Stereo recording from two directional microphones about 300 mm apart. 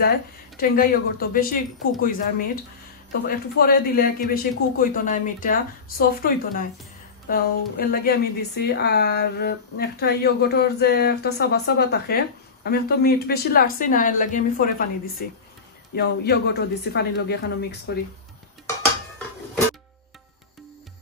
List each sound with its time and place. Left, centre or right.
0.6 s speech: left
3.3 s speech: left